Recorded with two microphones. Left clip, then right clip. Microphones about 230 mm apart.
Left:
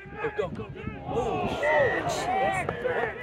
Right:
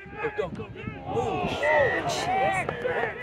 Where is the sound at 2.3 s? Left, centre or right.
Centre.